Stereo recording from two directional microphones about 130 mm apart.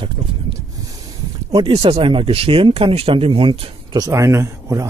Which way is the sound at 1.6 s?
45° right (ahead or behind).